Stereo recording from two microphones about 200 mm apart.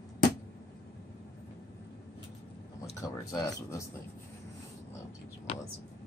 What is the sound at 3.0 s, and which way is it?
Speech, 15° left (ahead or behind).